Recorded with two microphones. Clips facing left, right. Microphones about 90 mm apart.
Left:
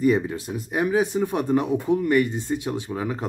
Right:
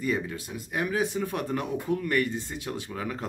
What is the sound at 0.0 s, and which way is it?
Speech, 30° left (ahead or behind).